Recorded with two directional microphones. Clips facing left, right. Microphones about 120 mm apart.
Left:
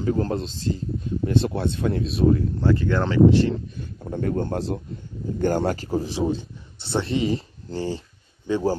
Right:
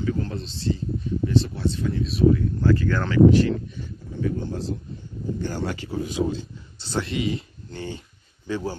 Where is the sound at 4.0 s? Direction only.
60° left (ahead or behind).